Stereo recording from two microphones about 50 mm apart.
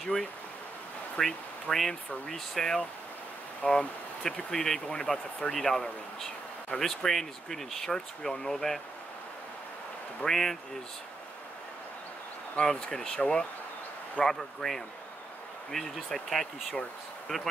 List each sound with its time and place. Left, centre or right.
1.1 s speech: centre
10.2 s speech: centre
12.5 s speech: centre
14.2 s speech: centre